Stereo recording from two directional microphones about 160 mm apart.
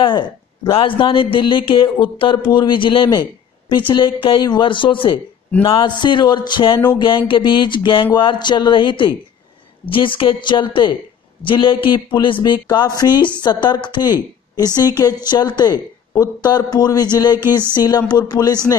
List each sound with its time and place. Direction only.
0.7 s speech: 35° left (ahead or behind)
17.4 s a sound: 15° right (ahead or behind)
17.7 s speech: 25° left (ahead or behind)